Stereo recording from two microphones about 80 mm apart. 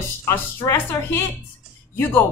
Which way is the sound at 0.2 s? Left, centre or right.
Left.